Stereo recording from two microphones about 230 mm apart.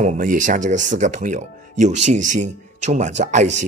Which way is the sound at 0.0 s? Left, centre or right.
Right.